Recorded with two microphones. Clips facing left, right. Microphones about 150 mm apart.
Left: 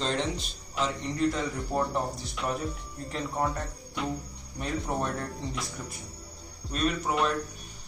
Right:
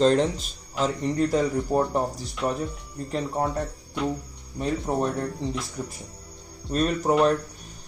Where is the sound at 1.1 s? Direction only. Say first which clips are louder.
Right 5 dB; 40° right (ahead or behind).